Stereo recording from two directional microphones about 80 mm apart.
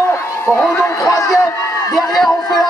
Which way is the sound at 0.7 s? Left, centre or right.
Left.